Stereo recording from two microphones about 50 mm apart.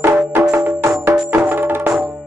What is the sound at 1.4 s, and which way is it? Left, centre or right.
Music, right.